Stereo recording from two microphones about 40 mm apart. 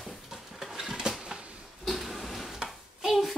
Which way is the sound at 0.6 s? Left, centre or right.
Centre.